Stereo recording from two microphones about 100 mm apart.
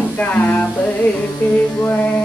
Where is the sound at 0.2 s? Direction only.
15° left (ahead or behind).